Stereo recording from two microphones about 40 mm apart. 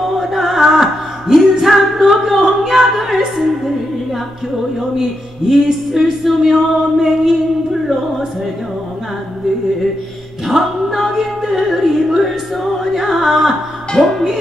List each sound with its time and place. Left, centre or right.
0.0 s music: centre
5.5 s speech: centre
10.5 s music: centre